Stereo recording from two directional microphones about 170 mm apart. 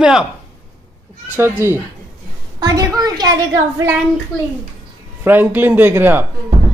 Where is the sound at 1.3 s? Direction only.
15° right (ahead or behind).